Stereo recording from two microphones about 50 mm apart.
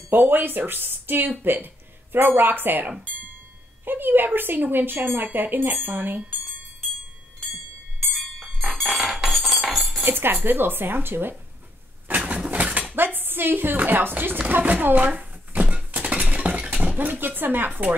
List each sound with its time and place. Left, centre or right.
0.1 s speech: right
8.1 s wind chime: centre
8.9 s music: centre
10.0 s speech: right
12.2 s bird: right
12.4 s dishes: right
12.9 s a sound: right
13.7 s speech: right
15.7 s dishes: right